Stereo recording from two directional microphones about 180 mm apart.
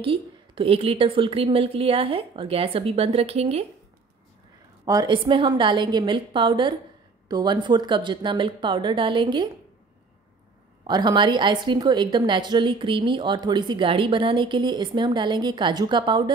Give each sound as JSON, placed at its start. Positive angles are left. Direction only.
{"t": 0.0, "sound": "a woman's voice", "side_deg": -30}
{"t": 4.8, "sound": "a woman's voice", "side_deg": -20}
{"t": 10.8, "sound": "a woman's voice", "side_deg": -25}